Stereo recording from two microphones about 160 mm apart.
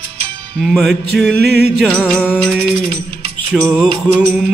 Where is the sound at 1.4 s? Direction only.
90° right.